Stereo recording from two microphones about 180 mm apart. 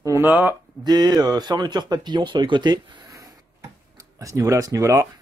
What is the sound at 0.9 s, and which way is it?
Speech, 25° right (ahead or behind).